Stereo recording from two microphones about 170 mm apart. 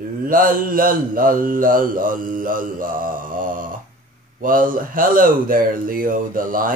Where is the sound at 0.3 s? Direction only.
55° right (ahead or behind).